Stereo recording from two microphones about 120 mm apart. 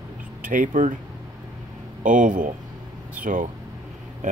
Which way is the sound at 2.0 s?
90° right.